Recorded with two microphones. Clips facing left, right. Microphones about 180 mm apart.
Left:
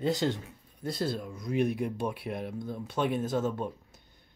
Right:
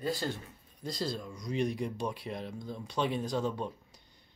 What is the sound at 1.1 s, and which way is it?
Speech, 5° left (ahead or behind).